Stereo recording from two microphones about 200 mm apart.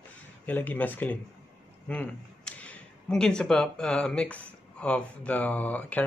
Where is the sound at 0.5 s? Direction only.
10° left (ahead or behind).